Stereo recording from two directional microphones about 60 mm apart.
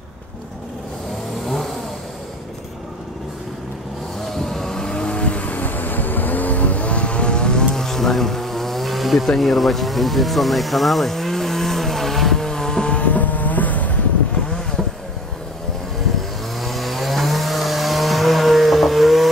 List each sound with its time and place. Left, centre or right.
1.4 s vehicle: centre
4.3 s vehicle: centre
13.0 s vehicle: left
14.5 s vehicle: centre
16.2 s chainsaw: centre